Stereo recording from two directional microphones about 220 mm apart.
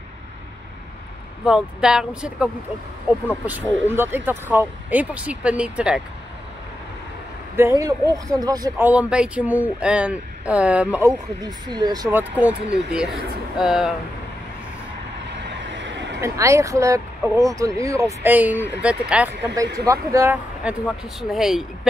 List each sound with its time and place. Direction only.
1.4 s speech: 5° right (ahead or behind)
3.8 s speech: 10° right (ahead or behind)
7.5 s speech: 15° right (ahead or behind)
15.4 s vehicle: 55° right (ahead or behind)
16.2 s speech: 15° right (ahead or behind)